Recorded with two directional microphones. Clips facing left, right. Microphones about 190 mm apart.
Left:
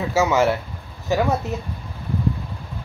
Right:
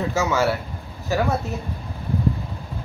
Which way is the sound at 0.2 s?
20° left (ahead or behind).